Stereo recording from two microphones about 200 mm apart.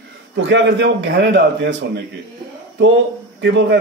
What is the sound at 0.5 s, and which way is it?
Speech, 65° right (ahead or behind).